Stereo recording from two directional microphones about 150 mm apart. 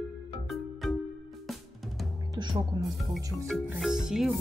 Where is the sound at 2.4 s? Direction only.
25° right (ahead or behind).